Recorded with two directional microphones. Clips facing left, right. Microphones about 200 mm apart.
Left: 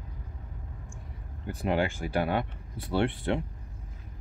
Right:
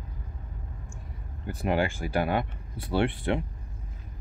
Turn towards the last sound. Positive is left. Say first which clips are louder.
# right 1 dB
turn(degrees=-15)  # may be behind; listen again after turning